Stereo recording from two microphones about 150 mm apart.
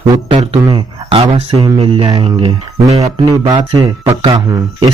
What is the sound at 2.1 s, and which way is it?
Speech, 35° right (ahead or behind).